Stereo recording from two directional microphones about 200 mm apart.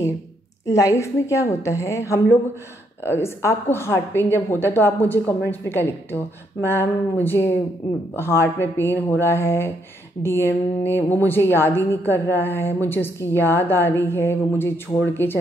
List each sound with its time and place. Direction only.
0.7 s a woman's voice: 15° left (ahead or behind)